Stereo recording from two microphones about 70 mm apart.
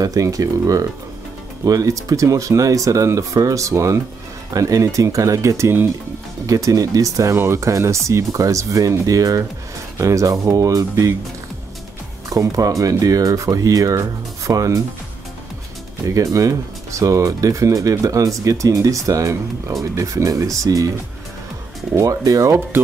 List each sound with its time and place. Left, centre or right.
0.0 s speech: right
4.6 s speech: right
6.4 s speech: right
7.3 s speech: right
12.3 s speech: right
16.1 s speech: right
21.9 s speech: right